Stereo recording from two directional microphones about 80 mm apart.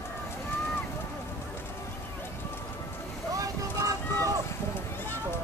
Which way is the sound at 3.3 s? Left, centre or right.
Right.